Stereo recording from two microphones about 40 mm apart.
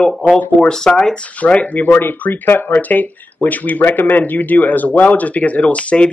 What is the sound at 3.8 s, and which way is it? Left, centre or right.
A man's voice, left.